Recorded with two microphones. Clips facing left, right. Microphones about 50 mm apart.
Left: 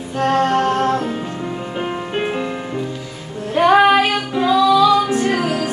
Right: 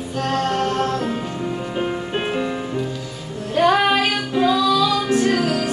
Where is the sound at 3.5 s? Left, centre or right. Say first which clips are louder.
Left 4 dB; centre.